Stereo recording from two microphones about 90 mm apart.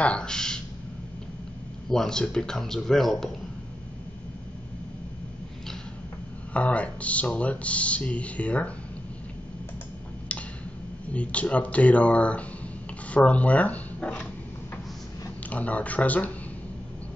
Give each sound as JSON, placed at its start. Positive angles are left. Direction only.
{"t": 0.0, "sound": "speech", "side_deg": 10}
{"t": 1.9, "sound": "speech", "side_deg": 5}
{"t": 6.5, "sound": "speech", "side_deg": 15}
{"t": 11.1, "sound": "speech", "side_deg": 15}
{"t": 15.5, "sound": "speech", "side_deg": 15}